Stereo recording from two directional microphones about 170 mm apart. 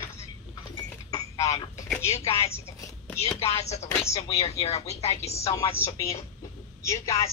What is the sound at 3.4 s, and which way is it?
Speech, 40° left (ahead or behind).